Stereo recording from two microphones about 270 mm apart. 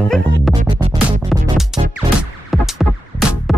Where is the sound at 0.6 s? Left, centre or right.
Centre.